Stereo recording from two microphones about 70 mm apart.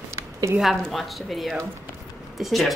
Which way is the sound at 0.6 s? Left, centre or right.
Centre.